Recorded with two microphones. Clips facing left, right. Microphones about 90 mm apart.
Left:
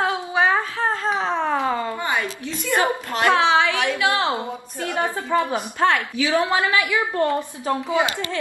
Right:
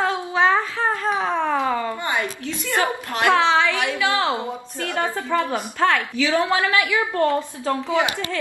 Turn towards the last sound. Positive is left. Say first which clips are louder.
# even
turn(degrees=15)  # may be behind; listen again after turning